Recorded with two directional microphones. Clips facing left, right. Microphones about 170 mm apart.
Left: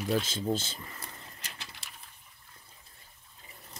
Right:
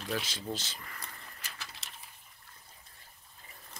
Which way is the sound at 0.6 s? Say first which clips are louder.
Left 2 dB; 25° left (ahead or behind).